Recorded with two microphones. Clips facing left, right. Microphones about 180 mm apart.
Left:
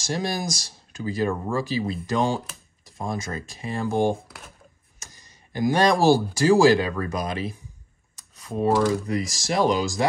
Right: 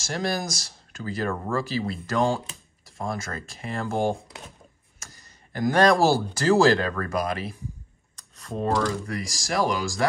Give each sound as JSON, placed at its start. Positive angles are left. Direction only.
{"t": 0.0, "sound": "speech", "side_deg": 15}
{"t": 8.2, "sound": "a sound", "side_deg": 5}
{"t": 9.6, "sound": "speech", "side_deg": 20}